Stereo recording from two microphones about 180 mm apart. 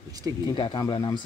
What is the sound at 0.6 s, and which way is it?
Speech, 25° left (ahead or behind).